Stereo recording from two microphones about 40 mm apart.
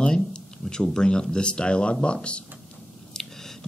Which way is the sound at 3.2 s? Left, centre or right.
Centre.